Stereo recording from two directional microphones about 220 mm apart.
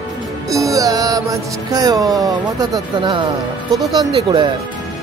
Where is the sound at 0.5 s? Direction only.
15° right (ahead or behind).